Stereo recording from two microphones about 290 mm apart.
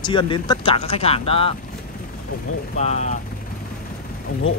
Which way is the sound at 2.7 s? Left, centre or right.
Left.